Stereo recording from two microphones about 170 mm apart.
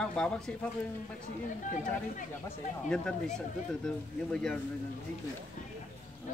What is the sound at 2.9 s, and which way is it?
Speech, 5° left (ahead or behind).